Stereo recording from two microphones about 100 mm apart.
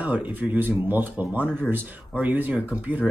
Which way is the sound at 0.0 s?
15° right (ahead or behind).